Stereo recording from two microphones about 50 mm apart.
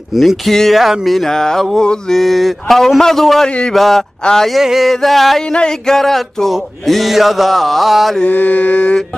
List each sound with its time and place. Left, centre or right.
0.1 s mantra: centre
1.8 s a man's voice: centre
3.4 s mantra: centre
3.7 s mantra: centre
4.2 s a sound: centre
4.5 s mantra: centre
5.5 s a man's voice: centre
6.5 s mantra: centre
8.3 s mantra: left